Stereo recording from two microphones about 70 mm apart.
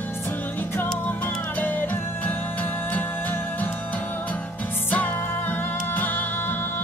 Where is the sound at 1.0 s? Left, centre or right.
Left.